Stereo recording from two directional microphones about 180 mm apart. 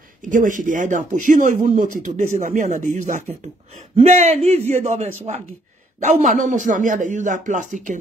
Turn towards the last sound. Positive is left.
turn(degrees=-45)  # may be behind; listen again after turning